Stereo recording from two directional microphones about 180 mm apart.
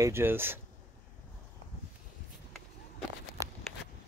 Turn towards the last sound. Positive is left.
turn(degrees=-20)  # may be behind; listen again after turning